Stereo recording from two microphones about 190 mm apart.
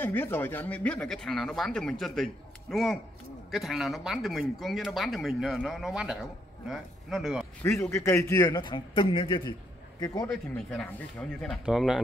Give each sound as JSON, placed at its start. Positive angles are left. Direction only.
{"t": 0.0, "sound": "speech", "side_deg": 10}
{"t": 7.6, "sound": "a man's voice", "side_deg": 15}
{"t": 10.2, "sound": "speech", "side_deg": 5}